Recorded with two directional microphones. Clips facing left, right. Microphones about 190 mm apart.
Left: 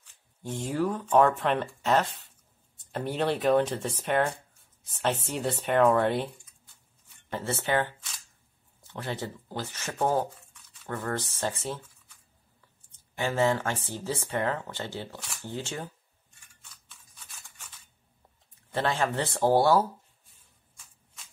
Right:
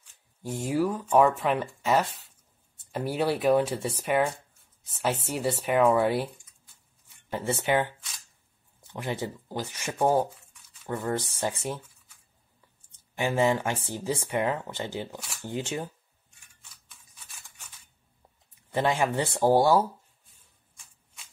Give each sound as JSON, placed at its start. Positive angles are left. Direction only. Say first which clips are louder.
{"t": 0.4, "sound": "speech", "louder": "right 2 dB", "side_deg": -10}
{"t": 12.9, "sound": "speech", "louder": "right 2 dB", "side_deg": -15}
{"t": 18.7, "sound": "speech", "louder": "right 2 dB", "side_deg": -15}